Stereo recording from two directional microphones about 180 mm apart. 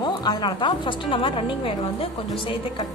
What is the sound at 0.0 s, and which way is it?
A woman's voice, 25° left (ahead or behind).